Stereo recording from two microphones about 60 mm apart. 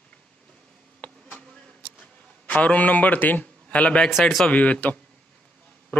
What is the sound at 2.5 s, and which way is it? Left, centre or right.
A man's voice, left.